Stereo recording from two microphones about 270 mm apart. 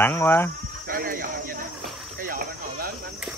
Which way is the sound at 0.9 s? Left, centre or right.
Right.